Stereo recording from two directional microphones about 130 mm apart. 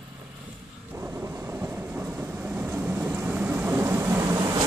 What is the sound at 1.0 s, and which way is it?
Train, 15° right (ahead or behind).